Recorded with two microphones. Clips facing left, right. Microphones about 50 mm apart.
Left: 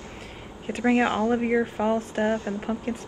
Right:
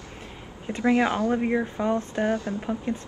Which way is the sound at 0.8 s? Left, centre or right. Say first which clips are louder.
Even; left.